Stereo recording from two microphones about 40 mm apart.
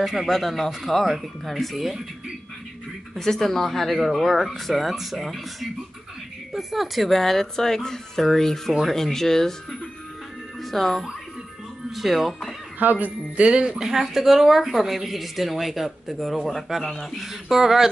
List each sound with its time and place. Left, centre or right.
0.0 s a woman's voice: centre
3.2 s a woman's voice: centre
10.6 s speech: centre
12.7 s speech: right
13.4 s speech: right
13.7 s a woman's voice: centre
17.2 s a woman's voice: centre